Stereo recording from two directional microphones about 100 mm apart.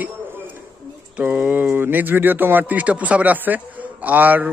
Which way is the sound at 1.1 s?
15° right (ahead or behind).